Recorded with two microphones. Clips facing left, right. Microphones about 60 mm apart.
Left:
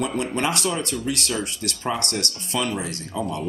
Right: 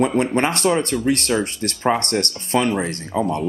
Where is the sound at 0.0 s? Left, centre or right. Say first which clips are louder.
Right 6 dB; right.